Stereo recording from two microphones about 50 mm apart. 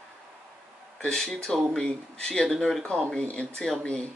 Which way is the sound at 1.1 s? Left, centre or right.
Centre.